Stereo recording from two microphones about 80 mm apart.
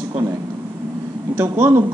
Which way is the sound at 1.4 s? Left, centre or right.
Right.